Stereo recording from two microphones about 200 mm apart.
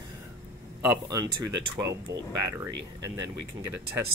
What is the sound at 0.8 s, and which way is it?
Speech, 10° right (ahead or behind).